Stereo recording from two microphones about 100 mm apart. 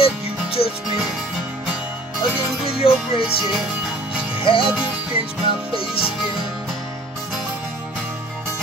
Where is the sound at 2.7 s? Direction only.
75° left (ahead or behind).